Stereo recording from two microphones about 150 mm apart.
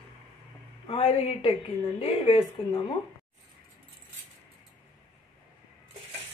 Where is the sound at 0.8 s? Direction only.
40° left (ahead or behind).